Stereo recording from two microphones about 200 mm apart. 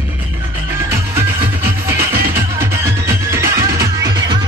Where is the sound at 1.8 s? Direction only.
10° right (ahead or behind).